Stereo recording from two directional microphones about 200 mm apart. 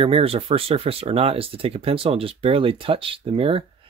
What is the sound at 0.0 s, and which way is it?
Speech, 30° right (ahead or behind).